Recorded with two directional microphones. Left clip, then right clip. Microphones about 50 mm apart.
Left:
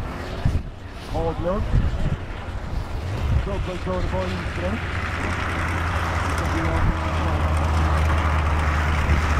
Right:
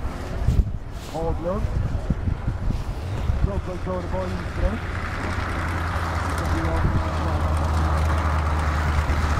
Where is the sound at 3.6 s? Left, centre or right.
Left.